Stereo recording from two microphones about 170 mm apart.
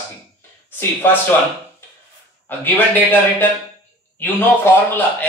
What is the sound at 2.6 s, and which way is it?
A man's voice, 10° left (ahead or behind).